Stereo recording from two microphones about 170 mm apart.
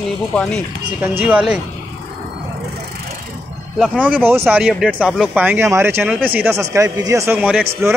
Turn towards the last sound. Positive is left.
turn(degrees=-10)  # may be behind; listen again after turning